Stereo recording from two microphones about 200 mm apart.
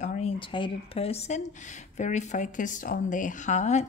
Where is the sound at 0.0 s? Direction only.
35° left (ahead or behind).